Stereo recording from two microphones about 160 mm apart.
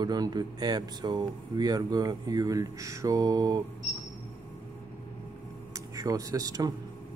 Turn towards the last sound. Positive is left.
turn(degrees=-25)  # may be behind; listen again after turning